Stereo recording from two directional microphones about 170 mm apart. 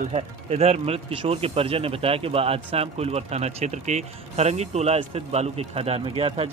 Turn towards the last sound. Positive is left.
turn(degrees=-35)  # may be behind; listen again after turning